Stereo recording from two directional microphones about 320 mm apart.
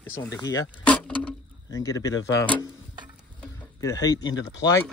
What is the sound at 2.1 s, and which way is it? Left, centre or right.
Speech, left.